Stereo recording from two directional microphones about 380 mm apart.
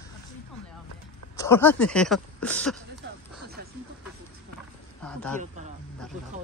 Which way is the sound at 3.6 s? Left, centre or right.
Right.